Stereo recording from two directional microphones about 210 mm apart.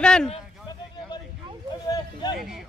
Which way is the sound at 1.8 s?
20° left (ahead or behind).